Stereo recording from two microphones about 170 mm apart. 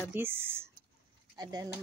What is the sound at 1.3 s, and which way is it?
Speech, 25° right (ahead or behind).